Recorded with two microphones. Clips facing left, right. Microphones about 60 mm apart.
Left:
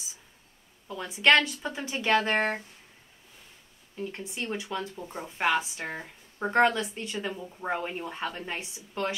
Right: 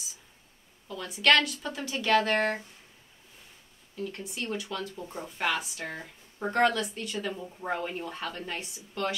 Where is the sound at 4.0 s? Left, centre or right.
Left.